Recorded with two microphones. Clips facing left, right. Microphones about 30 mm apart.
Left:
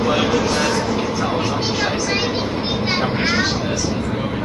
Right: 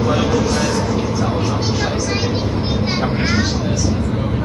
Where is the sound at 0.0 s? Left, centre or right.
Left.